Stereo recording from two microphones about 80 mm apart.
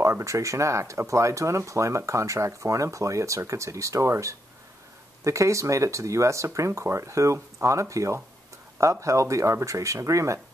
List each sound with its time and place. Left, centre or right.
0.0 s speech: right